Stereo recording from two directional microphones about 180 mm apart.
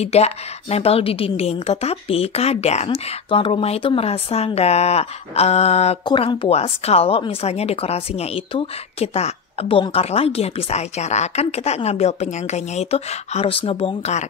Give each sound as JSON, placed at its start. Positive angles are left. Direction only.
{"t": 0.0, "sound": "speech", "side_deg": 35}